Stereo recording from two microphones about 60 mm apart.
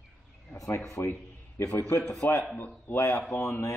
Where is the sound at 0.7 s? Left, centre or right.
Left.